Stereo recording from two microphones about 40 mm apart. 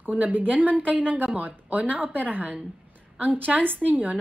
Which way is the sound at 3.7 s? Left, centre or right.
Right.